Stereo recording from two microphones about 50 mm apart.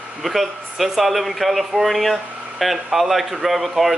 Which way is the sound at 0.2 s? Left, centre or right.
Centre.